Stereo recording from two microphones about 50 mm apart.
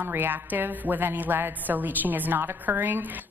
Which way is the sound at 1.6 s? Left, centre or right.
Right.